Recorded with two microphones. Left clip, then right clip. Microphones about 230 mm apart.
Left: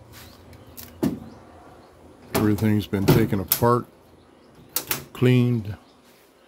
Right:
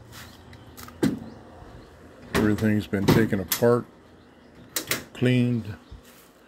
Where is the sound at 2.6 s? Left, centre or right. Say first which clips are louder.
Left 1 dB; left.